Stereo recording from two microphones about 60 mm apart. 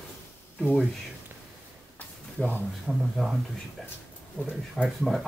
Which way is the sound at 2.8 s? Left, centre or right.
Centre.